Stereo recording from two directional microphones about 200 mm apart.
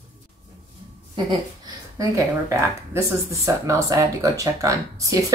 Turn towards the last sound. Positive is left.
turn(degrees=-15)  # may be behind; listen again after turning